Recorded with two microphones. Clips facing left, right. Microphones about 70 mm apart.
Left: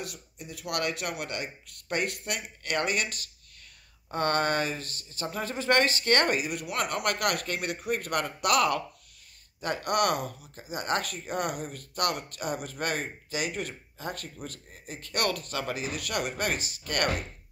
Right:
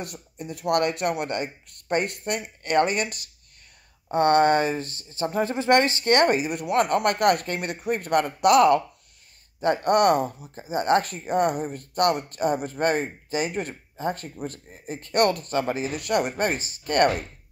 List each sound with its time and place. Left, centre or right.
0.0 s speech: right